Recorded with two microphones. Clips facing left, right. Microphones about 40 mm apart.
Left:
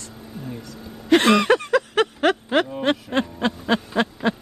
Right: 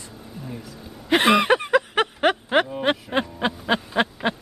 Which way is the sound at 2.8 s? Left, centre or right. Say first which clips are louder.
Left 1 dB; centre.